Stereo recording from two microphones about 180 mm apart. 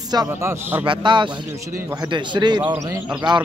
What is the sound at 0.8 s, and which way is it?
A man's voice, 25° right (ahead or behind).